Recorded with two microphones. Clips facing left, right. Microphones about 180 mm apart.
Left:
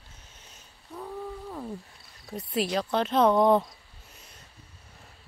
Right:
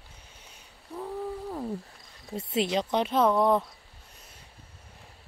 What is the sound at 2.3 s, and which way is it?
Speech, 25° right (ahead or behind).